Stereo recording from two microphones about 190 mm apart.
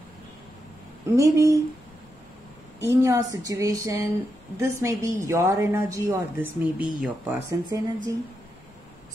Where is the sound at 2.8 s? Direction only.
15° right (ahead or behind).